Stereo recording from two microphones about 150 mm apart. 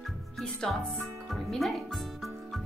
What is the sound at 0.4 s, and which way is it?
A woman's voice, 5° left (ahead or behind).